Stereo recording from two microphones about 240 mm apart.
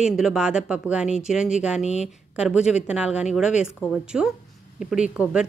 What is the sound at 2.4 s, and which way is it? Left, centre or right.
Speech, centre.